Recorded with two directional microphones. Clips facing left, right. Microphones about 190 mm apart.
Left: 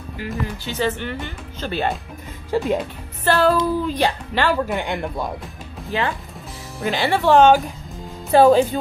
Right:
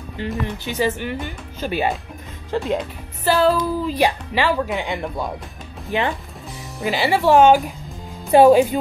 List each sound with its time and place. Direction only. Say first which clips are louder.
0.2 s speech: right 3 dB; 25° right (ahead or behind)
0.7 s speech: right 1 dB; 10° right (ahead or behind)
2.5 s speech: left 2 dB; centre (ahead or behind)
5.9 s speech: right 2 dB; 20° right (ahead or behind)
6.8 s speech: right 1 dB; 5° right (ahead or behind)